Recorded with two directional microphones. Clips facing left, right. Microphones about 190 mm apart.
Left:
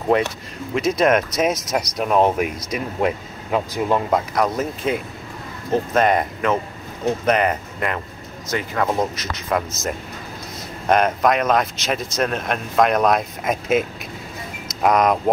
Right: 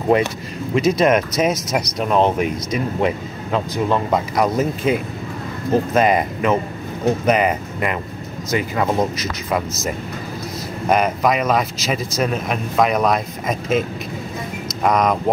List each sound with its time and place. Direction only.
0.7 s a man's voice: centre (ahead or behind)
4.4 s a man's voice: 5° right (ahead or behind)